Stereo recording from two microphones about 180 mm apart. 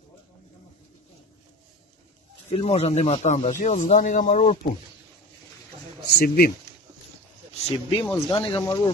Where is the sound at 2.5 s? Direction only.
35° left (ahead or behind).